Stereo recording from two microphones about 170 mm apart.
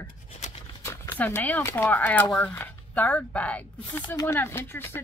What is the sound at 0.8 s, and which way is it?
Speech, 10° left (ahead or behind).